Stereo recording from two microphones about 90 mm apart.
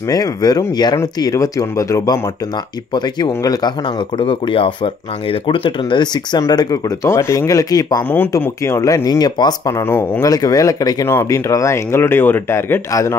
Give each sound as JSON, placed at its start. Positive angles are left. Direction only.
{"t": 0.1, "sound": "speech", "side_deg": 45}
{"t": 1.2, "sound": "speech", "side_deg": 40}
{"t": 2.9, "sound": "speech", "side_deg": 50}
{"t": 4.2, "sound": "speech", "side_deg": 80}
{"t": 6.5, "sound": "speech", "side_deg": 50}
{"t": 7.1, "sound": "speech", "side_deg": 30}
{"t": 8.4, "sound": "speech", "side_deg": 30}
{"t": 9.8, "sound": "speech", "side_deg": 25}
{"t": 10.2, "sound": "speech", "side_deg": 40}
{"t": 11.1, "sound": "speech", "side_deg": 30}